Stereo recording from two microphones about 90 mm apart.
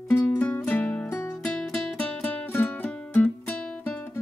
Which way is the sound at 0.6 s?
15° left (ahead or behind).